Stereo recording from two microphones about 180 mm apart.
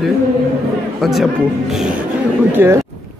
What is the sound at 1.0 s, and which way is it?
Speech, centre (ahead or behind).